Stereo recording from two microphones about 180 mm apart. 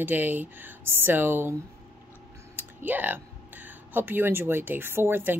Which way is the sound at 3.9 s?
10° right (ahead or behind).